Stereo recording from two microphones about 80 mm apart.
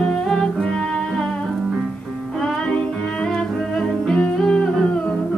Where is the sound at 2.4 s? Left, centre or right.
Centre.